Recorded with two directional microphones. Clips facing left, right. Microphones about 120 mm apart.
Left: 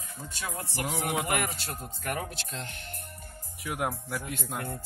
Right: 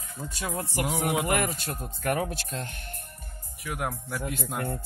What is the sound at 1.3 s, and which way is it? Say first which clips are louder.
Speech: right 3 dB; 50° right (ahead or behind).